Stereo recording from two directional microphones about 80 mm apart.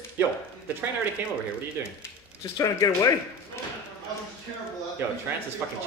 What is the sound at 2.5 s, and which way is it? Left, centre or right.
Speech, left.